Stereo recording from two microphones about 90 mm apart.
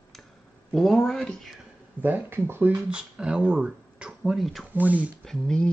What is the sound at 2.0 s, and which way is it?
Speech, 25° right (ahead or behind).